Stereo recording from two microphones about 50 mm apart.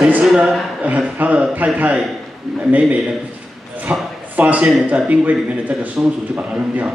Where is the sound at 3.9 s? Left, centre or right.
Right.